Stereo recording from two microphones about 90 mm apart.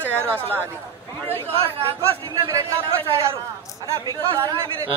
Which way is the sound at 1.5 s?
90° right.